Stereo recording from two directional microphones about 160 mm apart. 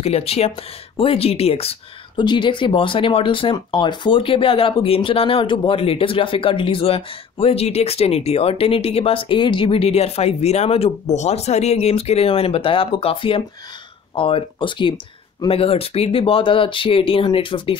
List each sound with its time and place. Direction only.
0.0 s speech: 40° left (ahead or behind)